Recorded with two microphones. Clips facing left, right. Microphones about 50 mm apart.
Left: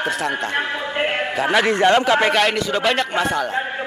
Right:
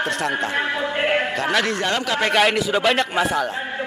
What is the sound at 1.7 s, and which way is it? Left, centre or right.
Speech, left.